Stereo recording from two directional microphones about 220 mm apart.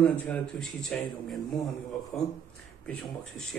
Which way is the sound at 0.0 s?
5° left (ahead or behind).